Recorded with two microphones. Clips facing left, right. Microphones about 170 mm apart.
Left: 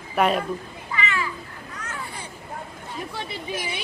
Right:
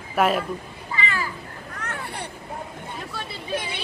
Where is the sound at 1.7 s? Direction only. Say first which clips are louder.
Right 2 dB; 65° right (ahead or behind).